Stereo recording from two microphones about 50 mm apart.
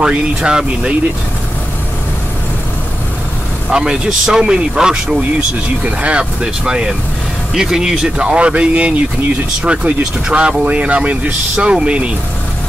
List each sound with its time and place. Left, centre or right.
0.4 s speech: centre
3.7 s speech: centre